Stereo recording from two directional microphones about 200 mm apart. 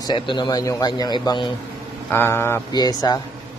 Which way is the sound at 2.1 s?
10° left (ahead or behind).